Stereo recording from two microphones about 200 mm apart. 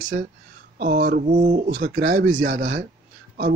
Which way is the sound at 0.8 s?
45° right (ahead or behind).